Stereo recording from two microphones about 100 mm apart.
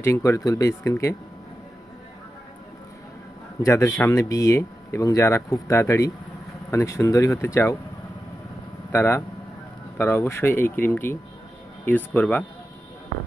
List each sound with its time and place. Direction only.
0.0 s speech: 25° left (ahead or behind)
3.6 s speech: 25° left (ahead or behind)
8.9 s speech: 25° left (ahead or behind)